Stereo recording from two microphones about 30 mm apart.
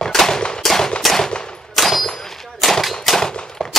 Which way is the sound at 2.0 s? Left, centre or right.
Left.